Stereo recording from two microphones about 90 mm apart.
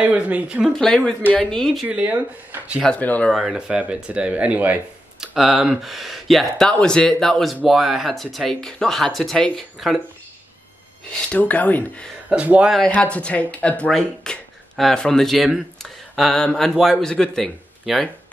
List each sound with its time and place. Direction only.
0.0 s speech: 15° right (ahead or behind)
0.7 s speech: 5° left (ahead or behind)
1.9 s speech: 15° right (ahead or behind)
2.8 s speech: 15° left (ahead or behind)
3.3 s speech: centre (ahead or behind)
5.2 s speech: 5° right (ahead or behind)
11.2 s speech: 15° left (ahead or behind)
12.3 s speech: 15° right (ahead or behind)
12.9 s speech: 15° left (ahead or behind)